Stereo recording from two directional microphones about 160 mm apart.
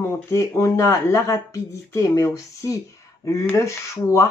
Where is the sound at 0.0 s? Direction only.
20° left (ahead or behind).